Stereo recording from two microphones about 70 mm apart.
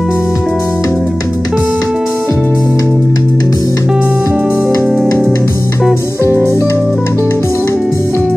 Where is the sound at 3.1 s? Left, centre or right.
Left.